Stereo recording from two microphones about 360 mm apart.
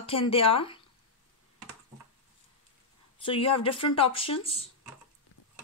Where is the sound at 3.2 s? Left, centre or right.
Centre.